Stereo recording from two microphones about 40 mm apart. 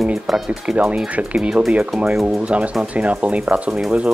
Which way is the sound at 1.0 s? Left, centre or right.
Right.